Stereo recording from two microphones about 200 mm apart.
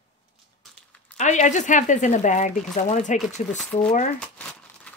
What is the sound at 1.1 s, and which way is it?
Speech, 35° left (ahead or behind).